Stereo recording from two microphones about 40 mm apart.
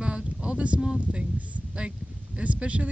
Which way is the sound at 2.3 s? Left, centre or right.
Right.